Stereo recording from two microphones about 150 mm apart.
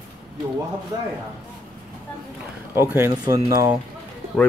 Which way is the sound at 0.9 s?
25° right (ahead or behind).